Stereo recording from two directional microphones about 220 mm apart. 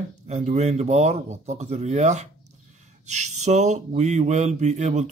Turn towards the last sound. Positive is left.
turn(degrees=-30)  # may be behind; listen again after turning